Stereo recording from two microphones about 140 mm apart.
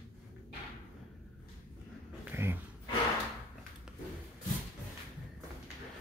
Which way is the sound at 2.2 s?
15° right (ahead or behind).